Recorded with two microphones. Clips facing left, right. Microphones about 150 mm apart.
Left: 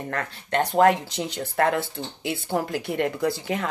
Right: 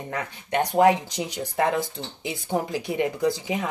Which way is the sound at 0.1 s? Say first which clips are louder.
Even; 10° right (ahead or behind).